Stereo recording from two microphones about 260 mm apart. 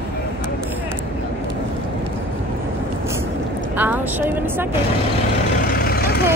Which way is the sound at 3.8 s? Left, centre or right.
Centre.